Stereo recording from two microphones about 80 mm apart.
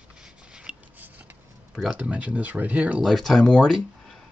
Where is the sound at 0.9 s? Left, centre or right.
Right.